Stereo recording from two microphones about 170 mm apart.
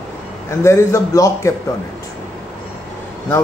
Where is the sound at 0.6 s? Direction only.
15° left (ahead or behind).